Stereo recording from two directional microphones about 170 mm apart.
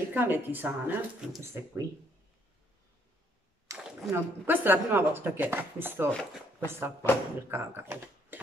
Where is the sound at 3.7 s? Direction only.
20° right (ahead or behind).